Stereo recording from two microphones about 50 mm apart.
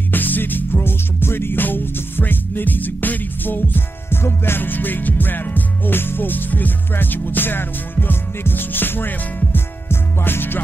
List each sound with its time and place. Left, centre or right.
0.1 s music: left